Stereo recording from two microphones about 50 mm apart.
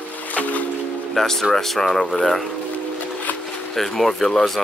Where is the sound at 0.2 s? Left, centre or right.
Left.